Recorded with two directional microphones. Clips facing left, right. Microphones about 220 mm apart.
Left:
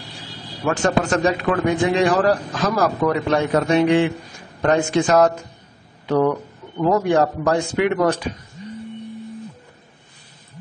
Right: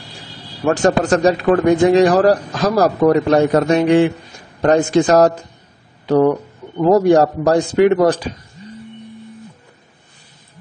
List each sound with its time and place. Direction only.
0.7 s a man's voice: 40° right (ahead or behind)